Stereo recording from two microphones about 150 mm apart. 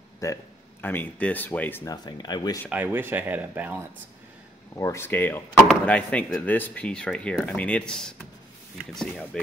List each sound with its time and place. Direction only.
0.2 s speech: 15° left (ahead or behind)
1.9 s speech: 30° left (ahead or behind)
2.7 s speech: 10° right (ahead or behind)
4.7 s speech: 20° left (ahead or behind); by 9.4 s 5° left (ahead or behind)